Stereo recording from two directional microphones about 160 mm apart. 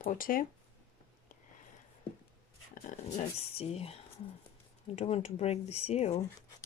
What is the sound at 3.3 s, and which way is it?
Speech, 40° left (ahead or behind).